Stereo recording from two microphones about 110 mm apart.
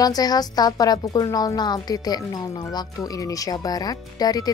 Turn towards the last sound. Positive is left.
turn(degrees=35)  # may be behind; listen again after turning